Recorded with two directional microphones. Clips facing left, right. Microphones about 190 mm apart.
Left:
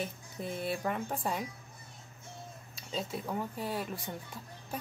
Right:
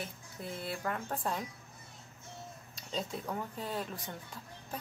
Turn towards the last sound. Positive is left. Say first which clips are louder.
# left 2 dB
turn(degrees=10)  # may be behind; listen again after turning